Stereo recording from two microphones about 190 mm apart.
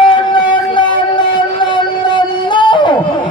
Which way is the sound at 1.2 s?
25° left (ahead or behind).